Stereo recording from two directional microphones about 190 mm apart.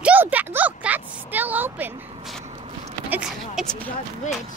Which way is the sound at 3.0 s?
5° right (ahead or behind).